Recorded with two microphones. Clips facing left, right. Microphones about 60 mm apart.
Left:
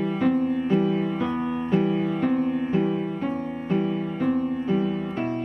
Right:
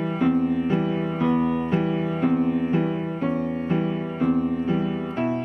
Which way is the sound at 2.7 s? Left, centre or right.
Centre.